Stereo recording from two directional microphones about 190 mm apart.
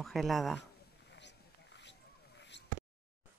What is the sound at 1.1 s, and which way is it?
Basketball bounce, 65° left (ahead or behind).